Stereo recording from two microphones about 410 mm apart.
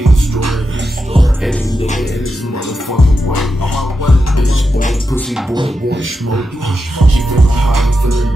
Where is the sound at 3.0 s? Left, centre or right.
Left.